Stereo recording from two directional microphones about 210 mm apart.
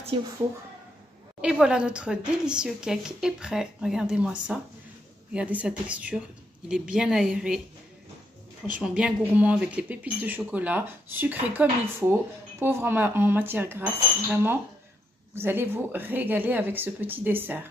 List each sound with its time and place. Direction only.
0.0 s a woman's voice: 20° right (ahead or behind)
1.4 s a woman's voice: 5° right (ahead or behind)
8.7 s speech: 5° right (ahead or behind)